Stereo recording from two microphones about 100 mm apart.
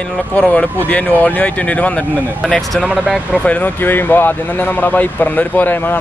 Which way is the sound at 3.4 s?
15° left (ahead or behind).